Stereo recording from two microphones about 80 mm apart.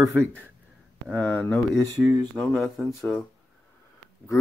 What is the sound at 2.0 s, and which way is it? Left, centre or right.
Speech, centre.